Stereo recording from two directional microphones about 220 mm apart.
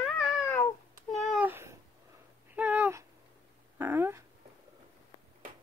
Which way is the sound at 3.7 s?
10° right (ahead or behind).